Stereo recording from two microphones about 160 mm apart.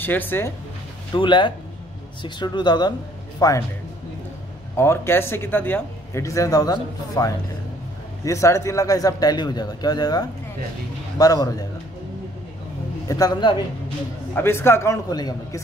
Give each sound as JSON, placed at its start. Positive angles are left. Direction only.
{"t": 0.0, "sound": "speech", "side_deg": 10}
{"t": 1.1, "sound": "a man's voice", "side_deg": 30}
{"t": 4.7, "sound": "a man's voice", "side_deg": 15}
{"t": 13.1, "sound": "a man's voice", "side_deg": 25}
{"t": 14.3, "sound": "speech", "side_deg": 15}